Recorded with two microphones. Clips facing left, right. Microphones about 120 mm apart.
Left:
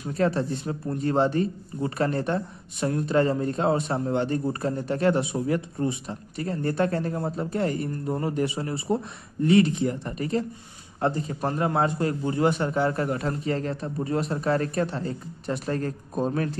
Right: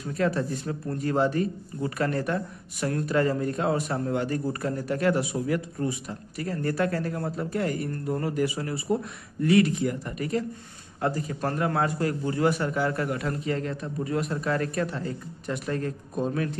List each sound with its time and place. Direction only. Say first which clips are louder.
0.2 s speech: left 2 dB; 30° left (ahead or behind)